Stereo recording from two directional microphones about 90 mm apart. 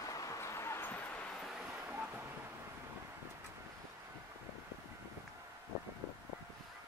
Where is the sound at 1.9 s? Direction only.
15° right (ahead or behind).